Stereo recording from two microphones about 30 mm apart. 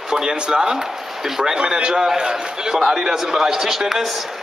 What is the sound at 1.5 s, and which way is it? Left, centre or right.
A man's voice, right.